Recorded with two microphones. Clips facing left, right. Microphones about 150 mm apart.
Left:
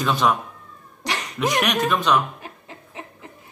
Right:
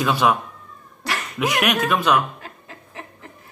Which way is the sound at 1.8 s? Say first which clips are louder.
Right 1 dB; 10° right (ahead or behind).